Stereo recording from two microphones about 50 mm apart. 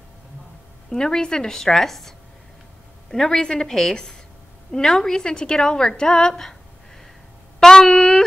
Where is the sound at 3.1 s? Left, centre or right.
Centre.